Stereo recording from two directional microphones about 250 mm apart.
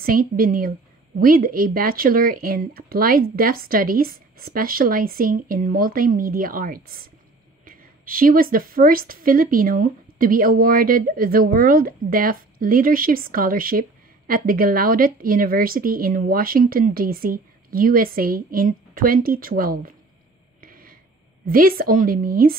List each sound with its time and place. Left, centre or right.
0.0 s a woman's voice: right
20.6 s a sound: right
21.5 s a woman's voice: right